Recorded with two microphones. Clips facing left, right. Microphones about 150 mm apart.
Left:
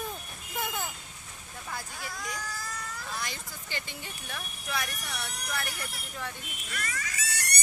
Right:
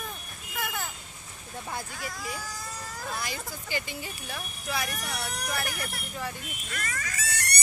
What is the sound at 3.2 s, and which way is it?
Speech, 10° right (ahead or behind).